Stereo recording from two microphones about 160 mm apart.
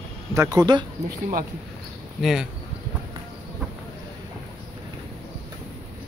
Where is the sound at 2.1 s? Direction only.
5° right (ahead or behind).